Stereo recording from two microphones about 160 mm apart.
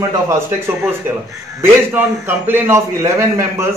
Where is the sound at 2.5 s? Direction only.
15° right (ahead or behind).